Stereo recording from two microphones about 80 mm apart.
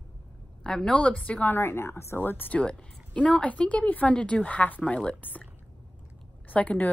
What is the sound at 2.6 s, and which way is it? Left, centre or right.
A woman's voice, centre.